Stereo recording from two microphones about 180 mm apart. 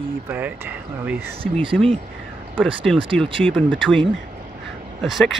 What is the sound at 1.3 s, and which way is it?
Speech, 30° right (ahead or behind).